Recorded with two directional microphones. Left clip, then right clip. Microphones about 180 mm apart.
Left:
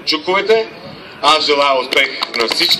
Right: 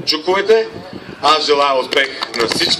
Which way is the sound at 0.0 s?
40° left (ahead or behind).